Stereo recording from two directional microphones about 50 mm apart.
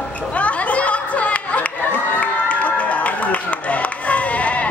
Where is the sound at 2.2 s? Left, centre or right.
Left.